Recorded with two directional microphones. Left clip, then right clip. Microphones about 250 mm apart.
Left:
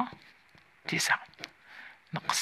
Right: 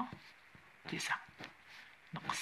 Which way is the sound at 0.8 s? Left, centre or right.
Left.